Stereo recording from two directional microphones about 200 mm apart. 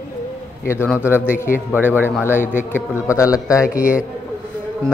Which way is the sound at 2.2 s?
10° left (ahead or behind).